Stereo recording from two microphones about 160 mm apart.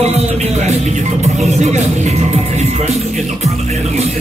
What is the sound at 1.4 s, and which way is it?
Music, 45° right (ahead or behind).